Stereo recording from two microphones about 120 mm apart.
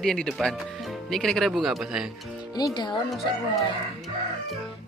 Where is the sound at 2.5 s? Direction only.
35° left (ahead or behind).